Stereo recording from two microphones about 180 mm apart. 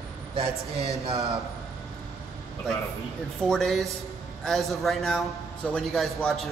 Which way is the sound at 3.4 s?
Centre (ahead or behind).